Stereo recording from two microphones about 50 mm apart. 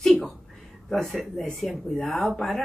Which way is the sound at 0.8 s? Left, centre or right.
Centre.